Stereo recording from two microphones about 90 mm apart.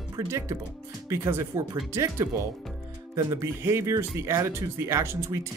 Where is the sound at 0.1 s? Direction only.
35° right (ahead or behind).